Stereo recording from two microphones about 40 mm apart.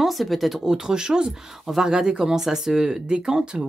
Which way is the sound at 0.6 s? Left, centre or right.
Centre.